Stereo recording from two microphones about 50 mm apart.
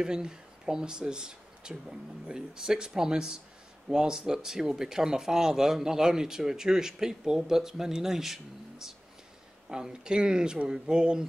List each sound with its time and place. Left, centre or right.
0.0 s speech: centre